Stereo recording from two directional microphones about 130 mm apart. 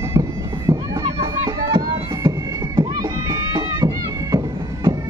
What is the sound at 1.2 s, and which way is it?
Music, 25° right (ahead or behind).